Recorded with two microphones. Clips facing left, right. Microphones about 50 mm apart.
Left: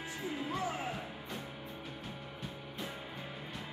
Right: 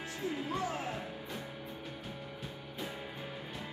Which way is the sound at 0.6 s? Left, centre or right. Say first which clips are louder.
Right 1 dB; centre.